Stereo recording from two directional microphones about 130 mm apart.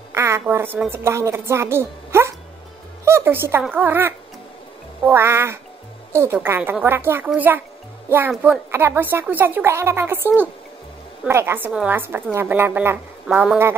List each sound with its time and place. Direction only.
0.1 s a woman's voice: 20° right (ahead or behind)